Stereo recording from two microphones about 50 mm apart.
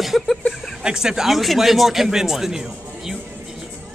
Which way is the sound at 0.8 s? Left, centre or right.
Centre.